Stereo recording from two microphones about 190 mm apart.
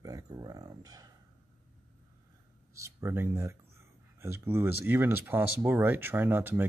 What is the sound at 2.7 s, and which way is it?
Speech, 15° right (ahead or behind).